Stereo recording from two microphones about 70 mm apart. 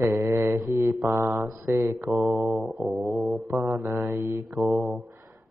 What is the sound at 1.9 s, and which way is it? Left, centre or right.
Mantra, right.